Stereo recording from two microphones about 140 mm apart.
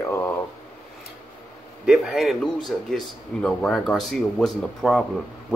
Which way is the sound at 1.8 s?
Centre (ahead or behind).